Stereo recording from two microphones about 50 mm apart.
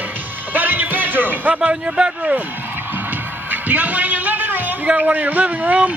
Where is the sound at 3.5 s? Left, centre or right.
Right.